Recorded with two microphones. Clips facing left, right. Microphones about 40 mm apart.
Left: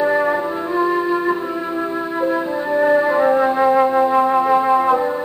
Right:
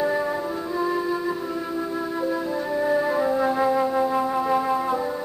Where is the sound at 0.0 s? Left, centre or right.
Left.